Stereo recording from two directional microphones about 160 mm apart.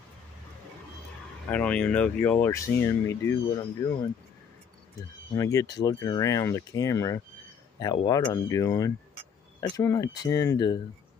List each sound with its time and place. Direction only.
1.5 s speech: 10° left (ahead or behind); by 4.0 s 25° left (ahead or behind)
5.3 s speech: 20° left (ahead or behind)